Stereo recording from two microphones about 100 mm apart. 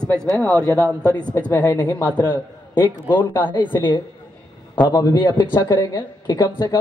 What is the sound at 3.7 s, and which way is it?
A woman's voice, 45° left (ahead or behind).